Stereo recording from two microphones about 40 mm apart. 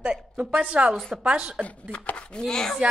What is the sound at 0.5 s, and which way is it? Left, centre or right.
A woman's voice, right.